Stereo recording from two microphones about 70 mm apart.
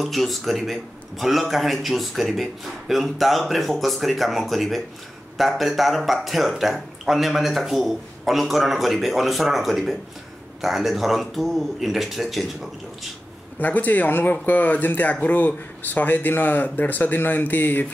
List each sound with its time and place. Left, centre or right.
0.0 s a man's voice: centre
13.6 s speech: left